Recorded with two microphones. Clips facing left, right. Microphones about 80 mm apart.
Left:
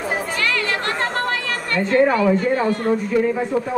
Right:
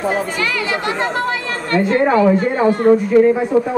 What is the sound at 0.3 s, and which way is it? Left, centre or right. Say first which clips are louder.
Chatter: right 2 dB; centre.